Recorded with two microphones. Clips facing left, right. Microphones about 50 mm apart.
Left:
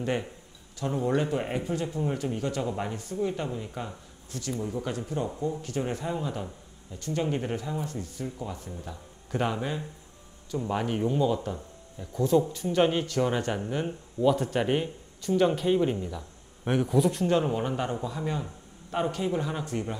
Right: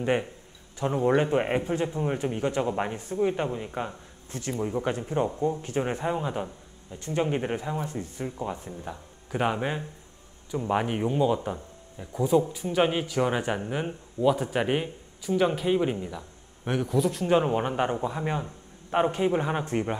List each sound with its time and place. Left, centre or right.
0.0 s a man's voice: right
16.6 s speech: centre
17.3 s a man's voice: right